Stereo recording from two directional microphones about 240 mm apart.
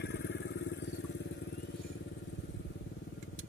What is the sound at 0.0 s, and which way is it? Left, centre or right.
Vehicle, left.